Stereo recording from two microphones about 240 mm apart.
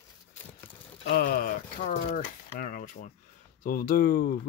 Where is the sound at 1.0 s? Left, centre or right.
Left.